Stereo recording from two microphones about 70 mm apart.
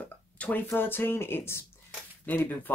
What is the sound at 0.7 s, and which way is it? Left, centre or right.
Speech, left.